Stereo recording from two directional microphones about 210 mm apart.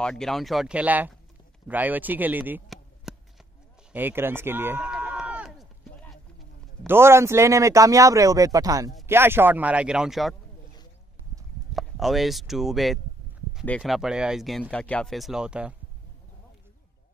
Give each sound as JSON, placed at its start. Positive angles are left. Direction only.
{"t": 0.0, "sound": "speech", "side_deg": 0}
{"t": 3.9, "sound": "run", "side_deg": -10}
{"t": 6.9, "sound": "speech", "side_deg": -10}
{"t": 11.7, "sound": "speech", "side_deg": 0}